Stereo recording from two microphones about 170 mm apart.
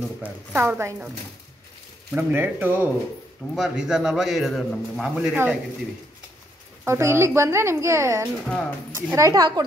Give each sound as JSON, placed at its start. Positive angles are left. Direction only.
{"t": 0.2, "sound": "speech", "side_deg": -10}
{"t": 2.1, "sound": "a man's voice", "side_deg": -10}
{"t": 6.8, "sound": "speech", "side_deg": -15}
{"t": 8.5, "sound": "a man's voice", "side_deg": 5}
{"t": 8.9, "sound": "speech", "side_deg": -15}